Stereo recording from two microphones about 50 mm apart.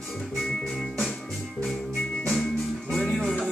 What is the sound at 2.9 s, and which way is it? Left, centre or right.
Music, centre.